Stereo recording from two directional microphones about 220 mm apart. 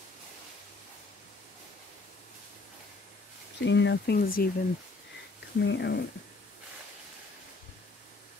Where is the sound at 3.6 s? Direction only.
55° left (ahead or behind).